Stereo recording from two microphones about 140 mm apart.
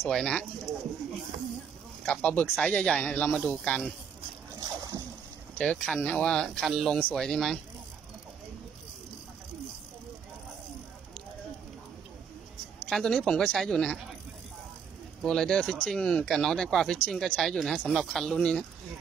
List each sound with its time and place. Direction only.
0.0 s speech: 5° left (ahead or behind)
2.0 s speech: 10° left (ahead or behind)
4.6 s splash: 20° right (ahead or behind)
5.6 s speech: 5° left (ahead or behind)
12.9 s speech: 5° left (ahead or behind)
15.2 s speech: 5° left (ahead or behind)